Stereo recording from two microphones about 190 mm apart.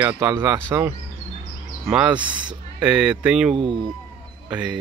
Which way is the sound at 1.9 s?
5° right (ahead or behind).